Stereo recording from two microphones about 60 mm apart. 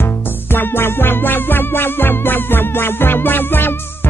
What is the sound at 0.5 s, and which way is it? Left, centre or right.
Music, left.